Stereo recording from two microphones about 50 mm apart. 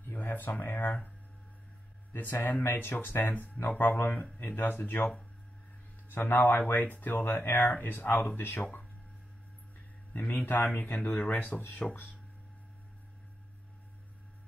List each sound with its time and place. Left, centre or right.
0.1 s speech: left
2.4 s speech: left
6.7 s speech: left
10.1 s speech: left